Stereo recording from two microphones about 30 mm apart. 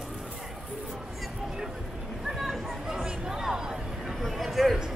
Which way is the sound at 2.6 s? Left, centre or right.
Right.